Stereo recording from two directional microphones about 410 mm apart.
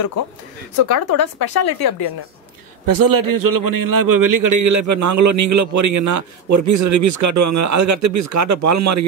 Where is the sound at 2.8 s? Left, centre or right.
Right.